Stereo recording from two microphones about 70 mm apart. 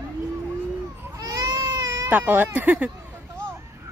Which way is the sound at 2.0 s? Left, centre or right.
Right.